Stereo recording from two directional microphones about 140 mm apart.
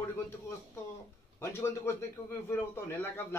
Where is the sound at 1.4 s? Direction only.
20° left (ahead or behind).